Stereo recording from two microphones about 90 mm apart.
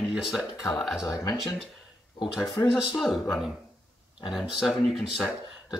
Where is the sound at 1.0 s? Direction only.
40° left (ahead or behind).